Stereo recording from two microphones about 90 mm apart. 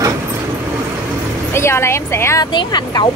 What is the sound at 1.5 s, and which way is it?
Speech, 30° left (ahead or behind).